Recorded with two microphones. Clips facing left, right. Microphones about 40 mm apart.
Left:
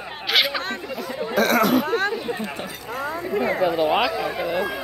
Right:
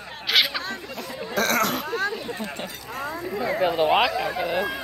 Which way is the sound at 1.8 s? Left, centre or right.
Left.